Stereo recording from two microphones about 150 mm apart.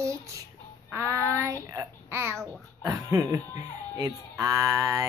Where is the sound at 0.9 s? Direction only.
20° right (ahead or behind).